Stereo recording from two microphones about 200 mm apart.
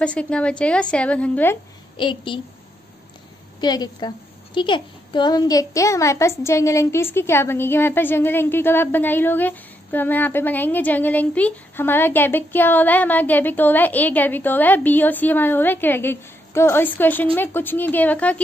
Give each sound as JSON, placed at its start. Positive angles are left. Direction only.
{"t": 0.0, "sound": "a woman's voice", "side_deg": 5}
{"t": 2.0, "sound": "a woman's voice", "side_deg": 25}
{"t": 3.6, "sound": "a woman's voice", "side_deg": 20}